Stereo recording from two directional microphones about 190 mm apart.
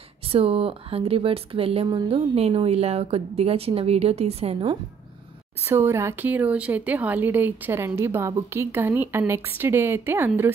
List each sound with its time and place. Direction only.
0.3 s speech: 30° right (ahead or behind)
5.7 s speech: 10° right (ahead or behind)